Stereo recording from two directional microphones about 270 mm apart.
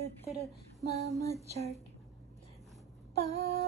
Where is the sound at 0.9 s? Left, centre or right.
Right.